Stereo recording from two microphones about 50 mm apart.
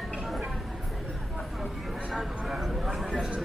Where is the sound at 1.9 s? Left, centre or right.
Centre.